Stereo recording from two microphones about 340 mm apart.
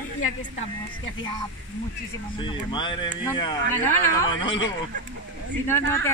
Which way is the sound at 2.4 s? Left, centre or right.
Centre.